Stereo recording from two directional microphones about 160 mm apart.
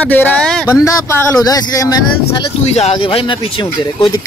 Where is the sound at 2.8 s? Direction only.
40° left (ahead or behind).